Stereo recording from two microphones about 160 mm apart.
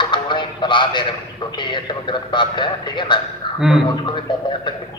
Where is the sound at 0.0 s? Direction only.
30° left (ahead or behind).